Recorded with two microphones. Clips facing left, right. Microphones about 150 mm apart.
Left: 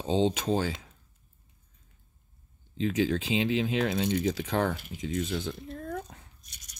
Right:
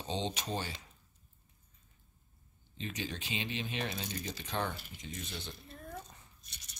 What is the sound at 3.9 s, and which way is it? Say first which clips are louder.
Speech: left 13 dB; 80° left.